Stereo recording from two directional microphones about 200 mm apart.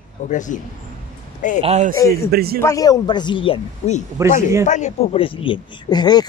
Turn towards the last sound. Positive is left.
turn(degrees=20)  # may be behind; listen again after turning